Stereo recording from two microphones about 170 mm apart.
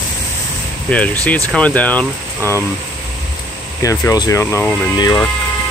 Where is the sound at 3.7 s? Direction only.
20° left (ahead or behind).